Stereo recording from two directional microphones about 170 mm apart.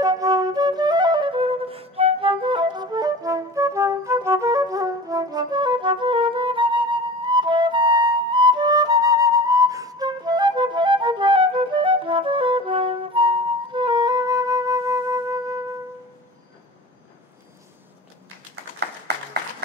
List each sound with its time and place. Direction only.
0.0 s flute: 20° right (ahead or behind)